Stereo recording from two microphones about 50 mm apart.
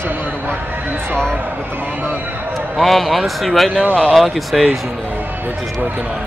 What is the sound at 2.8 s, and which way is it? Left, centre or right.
Speech, centre.